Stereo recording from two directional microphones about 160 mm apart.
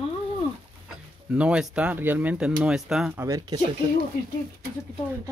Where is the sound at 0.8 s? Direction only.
5° right (ahead or behind).